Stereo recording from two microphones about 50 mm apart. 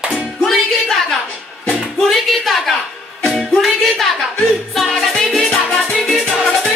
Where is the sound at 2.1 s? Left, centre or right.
Centre.